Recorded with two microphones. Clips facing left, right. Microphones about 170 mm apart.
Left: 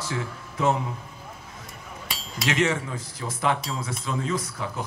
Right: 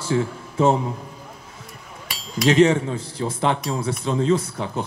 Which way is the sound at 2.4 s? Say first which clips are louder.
Right 9 dB; 35° right (ahead or behind).